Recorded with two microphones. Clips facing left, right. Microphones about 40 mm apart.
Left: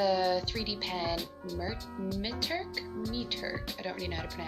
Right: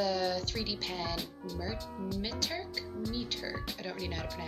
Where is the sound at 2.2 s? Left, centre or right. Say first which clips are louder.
Left 2 dB; centre.